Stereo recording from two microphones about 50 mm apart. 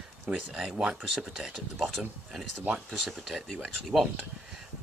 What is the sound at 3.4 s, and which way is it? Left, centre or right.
Speech, centre.